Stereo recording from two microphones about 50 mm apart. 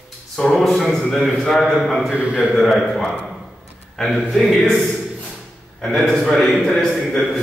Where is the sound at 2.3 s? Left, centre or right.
Centre.